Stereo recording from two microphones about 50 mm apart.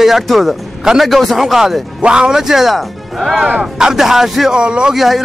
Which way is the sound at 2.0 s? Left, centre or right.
Centre.